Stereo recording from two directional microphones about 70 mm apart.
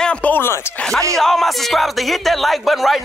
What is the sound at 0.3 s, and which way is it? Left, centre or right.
Speech, left.